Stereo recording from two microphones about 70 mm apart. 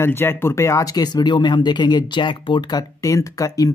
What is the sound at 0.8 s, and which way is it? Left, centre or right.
Speech, left.